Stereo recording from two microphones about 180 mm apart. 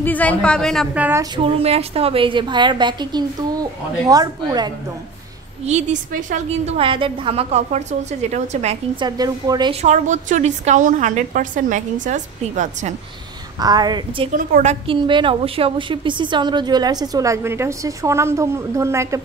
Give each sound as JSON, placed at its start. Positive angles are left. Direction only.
{"t": 0.0, "sound": "a woman's voice", "side_deg": 10}
{"t": 0.9, "sound": "speech", "side_deg": -10}
{"t": 1.3, "sound": "a woman's voice", "side_deg": -30}
{"t": 5.7, "sound": "a woman's voice", "side_deg": -40}
{"t": 6.8, "sound": "a woman's voice", "side_deg": -30}
{"t": 9.0, "sound": "a woman's voice", "side_deg": -20}
{"t": 9.8, "sound": "a woman's voice", "side_deg": -40}
{"t": 13.6, "sound": "a woman's voice", "side_deg": -20}
{"t": 14.3, "sound": "a woman's voice", "side_deg": -45}
{"t": 15.0, "sound": "a woman's voice", "side_deg": -25}